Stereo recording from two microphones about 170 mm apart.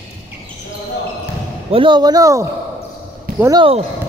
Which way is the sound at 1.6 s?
30° right (ahead or behind).